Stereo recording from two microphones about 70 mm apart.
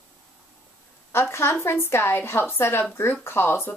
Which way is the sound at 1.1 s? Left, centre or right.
Left.